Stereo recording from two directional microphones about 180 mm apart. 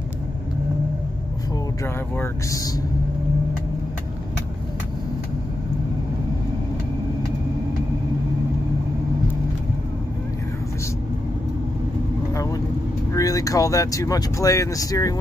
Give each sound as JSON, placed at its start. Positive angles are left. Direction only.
{"t": 2.1, "sound": "speech", "side_deg": 20}
{"t": 13.1, "sound": "speech", "side_deg": 20}